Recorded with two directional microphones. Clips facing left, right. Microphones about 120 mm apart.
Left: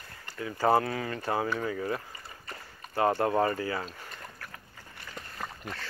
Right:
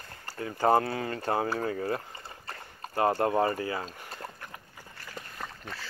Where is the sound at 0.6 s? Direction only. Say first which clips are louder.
Right 1 dB; 30° right (ahead or behind).